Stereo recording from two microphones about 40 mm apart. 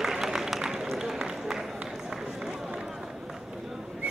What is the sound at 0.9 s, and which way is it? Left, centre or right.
Run, centre.